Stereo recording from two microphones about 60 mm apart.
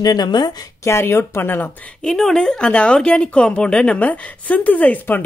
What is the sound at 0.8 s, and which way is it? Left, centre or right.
Speech, left.